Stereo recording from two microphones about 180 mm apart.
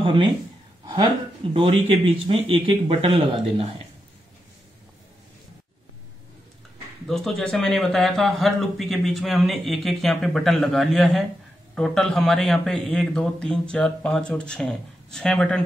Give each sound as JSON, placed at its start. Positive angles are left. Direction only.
{"t": 0.0, "sound": "speech", "side_deg": -30}
{"t": 1.5, "sound": "speech", "side_deg": -35}
{"t": 7.1, "sound": "speech", "side_deg": 0}